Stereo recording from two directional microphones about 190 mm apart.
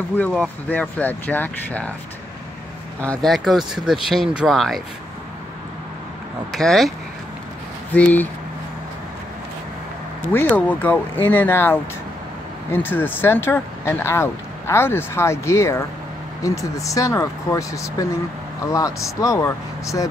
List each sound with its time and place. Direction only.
0.2 s speech: 5° left (ahead or behind)
3.0 s speech: 5° left (ahead or behind)
6.5 s speech: centre (ahead or behind)
7.9 s speech: 10° left (ahead or behind)
10.5 s speech: 10° left (ahead or behind)